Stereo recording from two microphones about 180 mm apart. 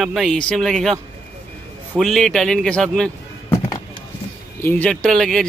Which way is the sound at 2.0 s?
Centre (ahead or behind).